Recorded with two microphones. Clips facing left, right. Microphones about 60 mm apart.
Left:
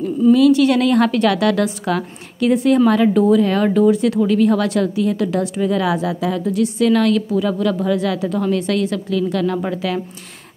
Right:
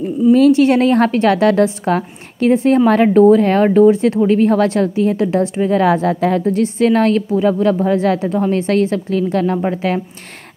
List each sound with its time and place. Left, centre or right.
0.3 s a woman's voice: right